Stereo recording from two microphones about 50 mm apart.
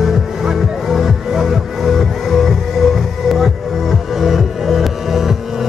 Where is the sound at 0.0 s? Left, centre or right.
Centre.